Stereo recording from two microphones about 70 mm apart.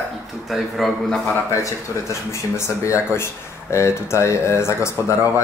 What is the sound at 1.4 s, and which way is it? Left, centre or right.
A man's voice, left.